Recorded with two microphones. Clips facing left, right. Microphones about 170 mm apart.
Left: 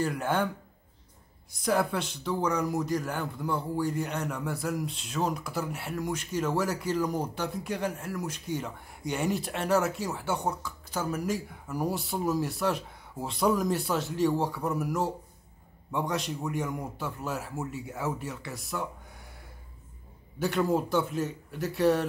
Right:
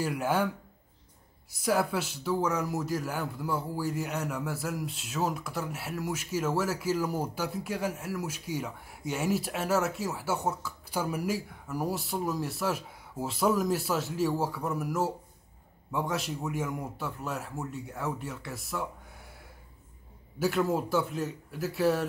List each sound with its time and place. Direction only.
0.0 s a man's voice: 10° right (ahead or behind)
1.5 s speech: 5° right (ahead or behind)
20.3 s speech: 5° right (ahead or behind)